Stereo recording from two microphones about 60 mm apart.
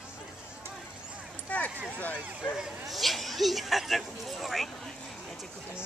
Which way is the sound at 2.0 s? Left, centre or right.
Left.